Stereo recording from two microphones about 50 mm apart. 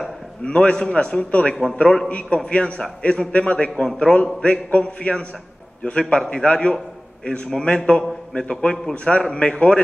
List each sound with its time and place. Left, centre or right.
0.5 s a man's voice: centre
1.5 s a man's voice: centre